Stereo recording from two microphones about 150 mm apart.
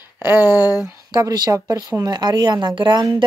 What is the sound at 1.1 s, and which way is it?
A woman's voice, 25° right (ahead or behind).